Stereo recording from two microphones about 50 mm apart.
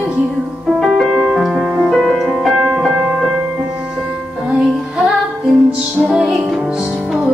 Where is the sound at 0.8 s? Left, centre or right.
Centre.